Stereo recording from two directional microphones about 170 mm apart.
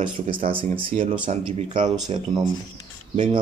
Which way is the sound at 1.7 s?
30° right (ahead or behind).